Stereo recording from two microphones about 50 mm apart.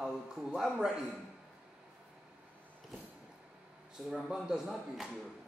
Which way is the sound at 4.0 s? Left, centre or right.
Centre.